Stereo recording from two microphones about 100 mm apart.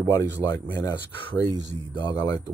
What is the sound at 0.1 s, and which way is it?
Speech, 30° left (ahead or behind).